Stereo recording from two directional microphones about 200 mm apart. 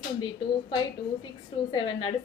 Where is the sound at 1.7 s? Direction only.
20° left (ahead or behind).